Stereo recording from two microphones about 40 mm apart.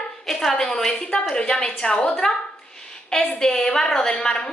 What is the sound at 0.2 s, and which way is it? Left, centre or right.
A woman's voice, centre.